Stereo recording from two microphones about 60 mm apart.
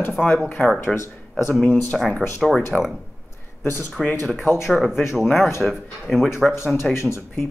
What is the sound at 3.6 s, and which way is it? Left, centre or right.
Speech, left.